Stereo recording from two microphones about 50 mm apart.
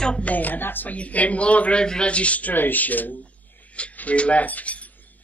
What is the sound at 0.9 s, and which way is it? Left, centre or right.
Speech, left.